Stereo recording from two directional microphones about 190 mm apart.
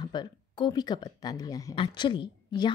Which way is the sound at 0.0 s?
20° left (ahead or behind).